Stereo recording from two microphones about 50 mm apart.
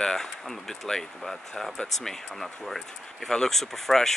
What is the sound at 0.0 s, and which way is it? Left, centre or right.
Speech, centre.